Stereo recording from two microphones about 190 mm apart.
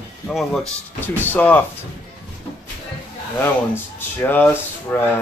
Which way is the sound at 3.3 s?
10° left (ahead or behind).